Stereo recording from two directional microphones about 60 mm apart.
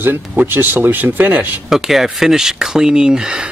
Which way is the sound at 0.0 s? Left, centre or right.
Right.